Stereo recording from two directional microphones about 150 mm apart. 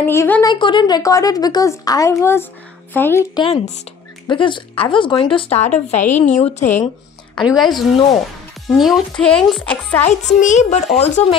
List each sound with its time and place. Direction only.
0.0 s a woman's voice: 15° left (ahead or behind)
0.5 s a woman's voice: 30° left (ahead or behind); by 3.3 s 15° left (ahead or behind)
3.3 s speech: 35° left (ahead or behind)
5.9 s a child's voice: 55° left (ahead or behind)
6.6 s a woman's voice: 15° left (ahead or behind)
7.3 s speech: centre (ahead or behind)
10.0 s a child's voice: 55° left (ahead or behind)